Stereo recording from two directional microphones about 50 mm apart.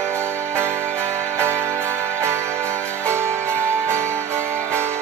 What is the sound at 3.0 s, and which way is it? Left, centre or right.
Music, right.